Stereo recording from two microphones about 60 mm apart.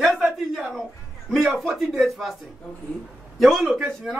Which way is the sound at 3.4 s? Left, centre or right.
Centre.